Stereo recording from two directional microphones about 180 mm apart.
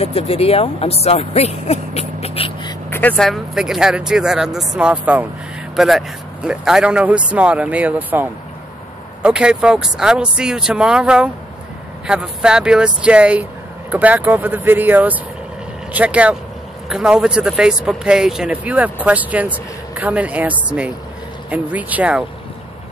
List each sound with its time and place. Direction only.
0.0 s speech: 35° left (ahead or behind)
2.9 s speech: 10° left (ahead or behind); by 22.2 s 10° right (ahead or behind)